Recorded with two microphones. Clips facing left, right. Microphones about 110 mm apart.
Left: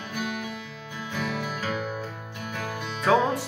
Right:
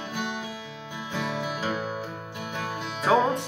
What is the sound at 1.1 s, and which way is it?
Music, 20° right (ahead or behind).